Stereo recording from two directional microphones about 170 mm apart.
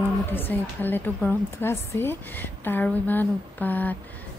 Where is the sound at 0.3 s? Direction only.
10° left (ahead or behind).